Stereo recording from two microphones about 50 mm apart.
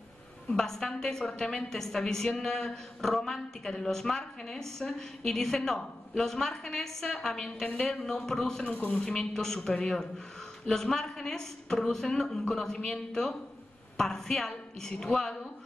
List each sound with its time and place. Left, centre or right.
0.6 s a woman's voice: centre
8.6 s speech: left
9.0 s a woman's voice: centre